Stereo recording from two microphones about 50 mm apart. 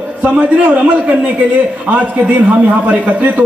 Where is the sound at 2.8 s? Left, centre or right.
Right.